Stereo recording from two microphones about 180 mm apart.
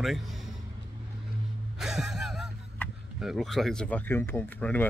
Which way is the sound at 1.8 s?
Centre (ahead or behind).